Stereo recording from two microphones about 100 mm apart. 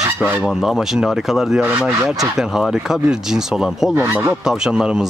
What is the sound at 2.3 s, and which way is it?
Speech, 5° right (ahead or behind).